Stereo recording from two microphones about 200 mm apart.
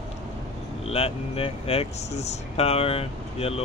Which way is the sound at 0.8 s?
30° left (ahead or behind).